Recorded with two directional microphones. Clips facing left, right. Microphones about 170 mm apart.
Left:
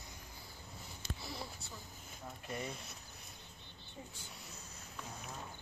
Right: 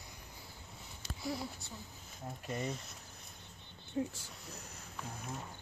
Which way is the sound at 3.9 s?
75° right (ahead or behind).